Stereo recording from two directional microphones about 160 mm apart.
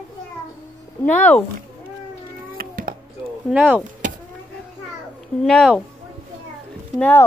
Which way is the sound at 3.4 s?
10° right (ahead or behind).